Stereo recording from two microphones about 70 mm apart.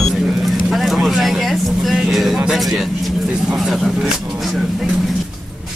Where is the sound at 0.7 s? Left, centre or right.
Centre.